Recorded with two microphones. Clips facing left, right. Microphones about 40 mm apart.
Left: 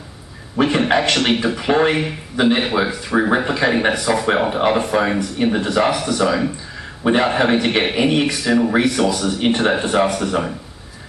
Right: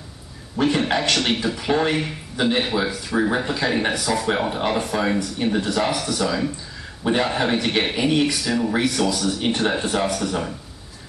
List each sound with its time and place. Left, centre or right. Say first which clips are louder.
0.6 s speech: left 4 dB; left